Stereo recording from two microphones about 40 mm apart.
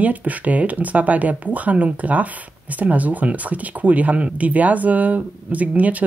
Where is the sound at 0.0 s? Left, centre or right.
Right.